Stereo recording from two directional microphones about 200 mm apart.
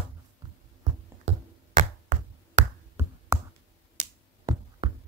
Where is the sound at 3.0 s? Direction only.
10° right (ahead or behind).